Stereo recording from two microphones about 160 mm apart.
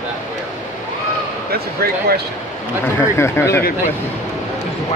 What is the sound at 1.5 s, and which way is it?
Speech, 70° right (ahead or behind).